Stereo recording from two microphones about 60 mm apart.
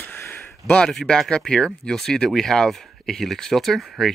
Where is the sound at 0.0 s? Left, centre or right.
Left.